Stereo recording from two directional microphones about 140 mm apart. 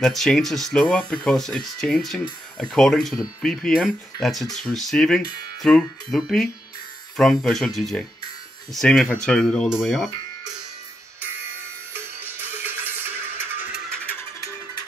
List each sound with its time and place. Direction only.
0.0 s speech: 5° left (ahead or behind)
11.9 s music: 15° right (ahead or behind)
13.9 s music: 10° left (ahead or behind)
14.4 s music: 25° left (ahead or behind)